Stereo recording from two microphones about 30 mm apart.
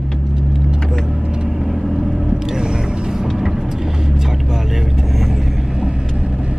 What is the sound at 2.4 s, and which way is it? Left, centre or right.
Vehicle, right.